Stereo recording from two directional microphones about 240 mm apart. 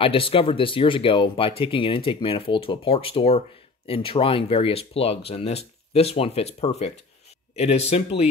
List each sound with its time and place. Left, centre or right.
0.0 s speech: left